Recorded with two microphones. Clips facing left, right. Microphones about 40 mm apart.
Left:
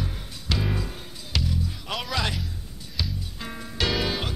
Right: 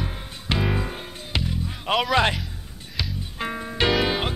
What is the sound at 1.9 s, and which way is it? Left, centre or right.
Music, right.